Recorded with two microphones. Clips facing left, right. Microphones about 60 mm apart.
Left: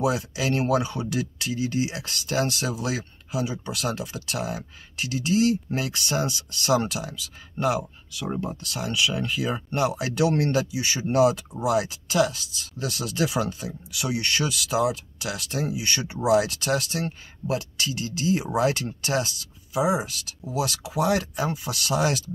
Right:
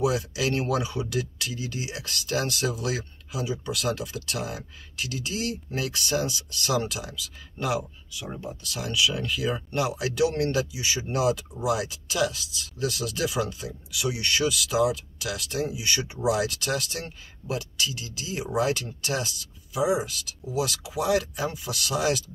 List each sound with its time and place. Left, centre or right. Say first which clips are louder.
0.0 s speech: even; left
1.1 s speech: left 2 dB; left
8.2 s speech: left 6 dB; left
8.7 s speech: even; left